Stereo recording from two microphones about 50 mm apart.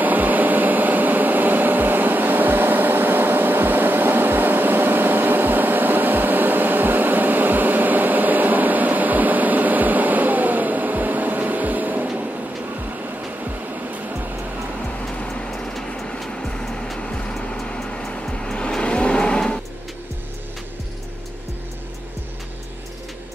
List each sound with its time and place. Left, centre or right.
0.0 s a sound: right
13.4 s music: right
15.5 s vehicle: centre
16.2 s music: centre
17.6 s vehicle: centre